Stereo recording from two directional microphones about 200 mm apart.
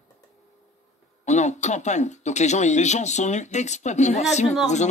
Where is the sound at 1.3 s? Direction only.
35° left (ahead or behind).